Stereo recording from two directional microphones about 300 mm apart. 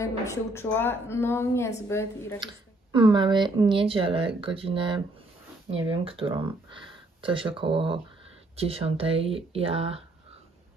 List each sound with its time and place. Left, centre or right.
0.3 s a woman's voice: centre
2.4 s speech: centre